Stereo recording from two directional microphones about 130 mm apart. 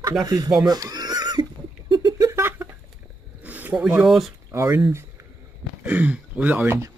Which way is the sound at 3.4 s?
10° right (ahead or behind).